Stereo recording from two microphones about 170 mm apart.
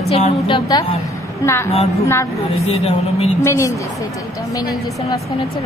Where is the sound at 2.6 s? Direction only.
35° left (ahead or behind).